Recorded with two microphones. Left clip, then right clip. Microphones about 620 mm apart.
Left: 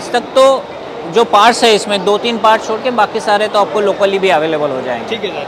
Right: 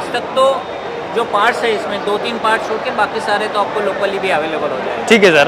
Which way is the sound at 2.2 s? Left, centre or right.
Left.